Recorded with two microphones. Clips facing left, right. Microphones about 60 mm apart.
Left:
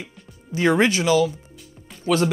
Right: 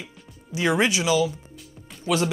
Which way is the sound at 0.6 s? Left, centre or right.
Left.